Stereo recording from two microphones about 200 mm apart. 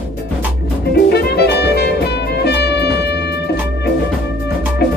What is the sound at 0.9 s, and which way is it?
Music, 55° left (ahead or behind).